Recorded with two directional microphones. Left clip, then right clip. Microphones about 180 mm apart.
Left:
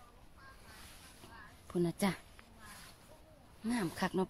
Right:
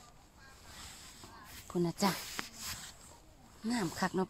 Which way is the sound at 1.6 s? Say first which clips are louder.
Right 2 dB; 15° right (ahead or behind).